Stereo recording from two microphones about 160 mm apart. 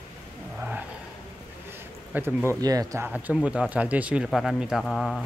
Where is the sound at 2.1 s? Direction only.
15° right (ahead or behind).